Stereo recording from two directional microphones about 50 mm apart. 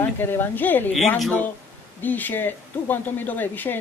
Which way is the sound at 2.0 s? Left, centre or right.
Left.